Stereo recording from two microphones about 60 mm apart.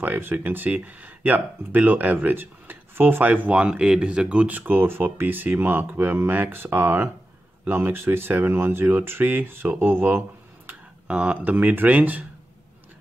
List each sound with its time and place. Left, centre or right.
0.0 s speech: right
11.1 s speech: right